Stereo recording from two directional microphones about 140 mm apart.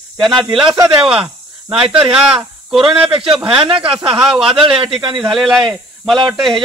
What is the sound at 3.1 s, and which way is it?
Speech, 40° right (ahead or behind).